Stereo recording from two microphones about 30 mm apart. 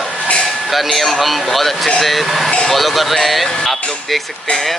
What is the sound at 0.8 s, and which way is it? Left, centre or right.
Speech, centre.